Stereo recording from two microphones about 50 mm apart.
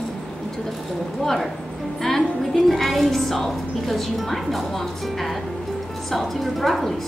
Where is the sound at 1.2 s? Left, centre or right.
Centre.